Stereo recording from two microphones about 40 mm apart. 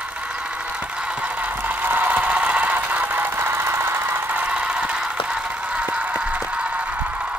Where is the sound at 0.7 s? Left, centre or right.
Right.